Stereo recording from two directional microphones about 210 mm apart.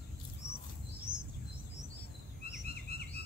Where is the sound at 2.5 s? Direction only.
50° left (ahead or behind).